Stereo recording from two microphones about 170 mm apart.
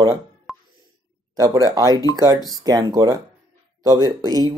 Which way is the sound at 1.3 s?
20° right (ahead or behind).